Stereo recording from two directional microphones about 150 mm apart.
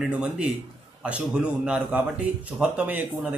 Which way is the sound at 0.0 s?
5° right (ahead or behind).